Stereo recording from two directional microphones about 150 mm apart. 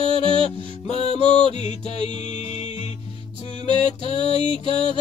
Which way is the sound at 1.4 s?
50° left (ahead or behind).